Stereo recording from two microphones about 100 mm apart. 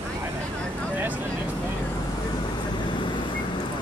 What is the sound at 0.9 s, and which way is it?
Vehicle, 15° right (ahead or behind).